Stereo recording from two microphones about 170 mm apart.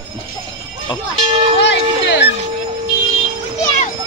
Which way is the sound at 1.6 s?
90° left.